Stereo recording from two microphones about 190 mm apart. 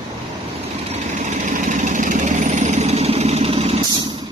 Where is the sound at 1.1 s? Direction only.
40° right (ahead or behind).